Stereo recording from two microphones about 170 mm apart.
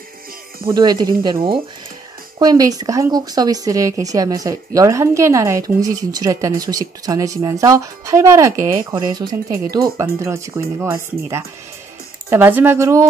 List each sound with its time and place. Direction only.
0.7 s speech: 25° right (ahead or behind)